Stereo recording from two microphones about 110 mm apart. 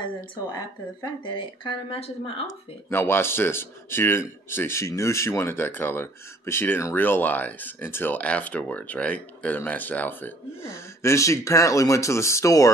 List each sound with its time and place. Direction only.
0.0 s speech: 45° left (ahead or behind); by 2.4 s 65° left (ahead or behind)
2.9 s speech: 20° left (ahead or behind)